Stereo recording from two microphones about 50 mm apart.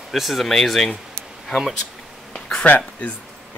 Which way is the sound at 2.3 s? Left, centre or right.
Centre.